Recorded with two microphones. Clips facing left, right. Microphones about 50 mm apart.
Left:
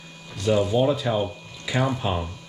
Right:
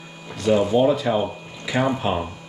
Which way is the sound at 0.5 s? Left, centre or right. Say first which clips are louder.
Right 3 dB; right.